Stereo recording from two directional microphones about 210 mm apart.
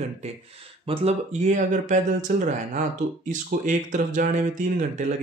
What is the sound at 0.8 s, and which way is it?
Speech, 30° right (ahead or behind).